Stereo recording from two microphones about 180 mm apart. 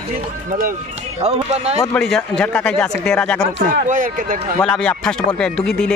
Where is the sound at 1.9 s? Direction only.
5° left (ahead or behind).